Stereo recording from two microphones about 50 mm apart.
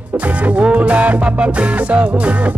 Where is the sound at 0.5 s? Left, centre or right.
Right.